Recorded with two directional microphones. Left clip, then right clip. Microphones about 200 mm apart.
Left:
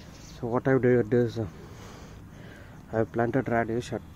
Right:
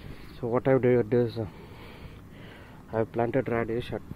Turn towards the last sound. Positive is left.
turn(degrees=15)  # may be behind; listen again after turning